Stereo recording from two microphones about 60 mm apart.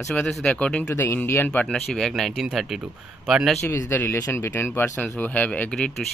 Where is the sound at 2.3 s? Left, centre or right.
Centre.